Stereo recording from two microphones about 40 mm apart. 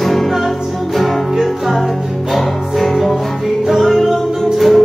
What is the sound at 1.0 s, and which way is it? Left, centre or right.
Music, centre.